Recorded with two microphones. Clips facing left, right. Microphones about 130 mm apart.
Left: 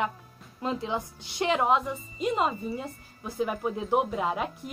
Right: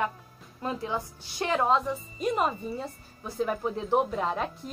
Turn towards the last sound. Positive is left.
turn(degrees=10)  # may be behind; listen again after turning